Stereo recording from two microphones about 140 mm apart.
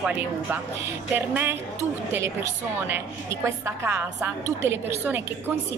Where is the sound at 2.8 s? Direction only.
20° right (ahead or behind).